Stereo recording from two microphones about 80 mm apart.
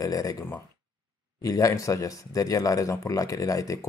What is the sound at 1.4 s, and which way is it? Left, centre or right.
Speech, left.